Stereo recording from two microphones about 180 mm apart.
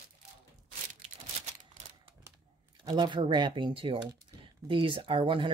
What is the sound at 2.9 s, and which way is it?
Speech, 25° right (ahead or behind).